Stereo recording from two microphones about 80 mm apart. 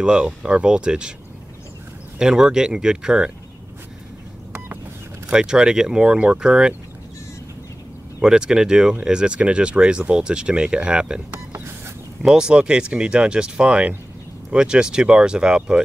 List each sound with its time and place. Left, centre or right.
0.0 s speech: centre
2.1 s speech: centre
4.5 s telephone dialing: right
5.3 s speech: centre
8.2 s speech: centre
12.3 s speech: centre